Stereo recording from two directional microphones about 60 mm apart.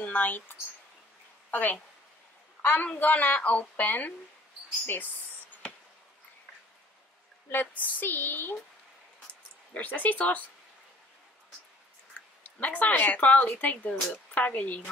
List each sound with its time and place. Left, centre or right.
0.0 s speech: left
1.5 s a woman's voice: left
7.5 s a woman's voice: left
12.4 s a woman's voice: left